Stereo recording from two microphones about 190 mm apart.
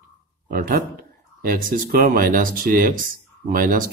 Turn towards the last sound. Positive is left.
turn(degrees=-45)  # may be behind; listen again after turning